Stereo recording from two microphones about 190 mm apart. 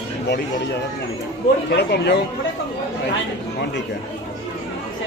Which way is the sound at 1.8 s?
60° left (ahead or behind).